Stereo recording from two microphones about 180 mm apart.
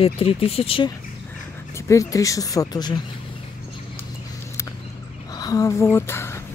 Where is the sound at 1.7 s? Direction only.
15° left (ahead or behind).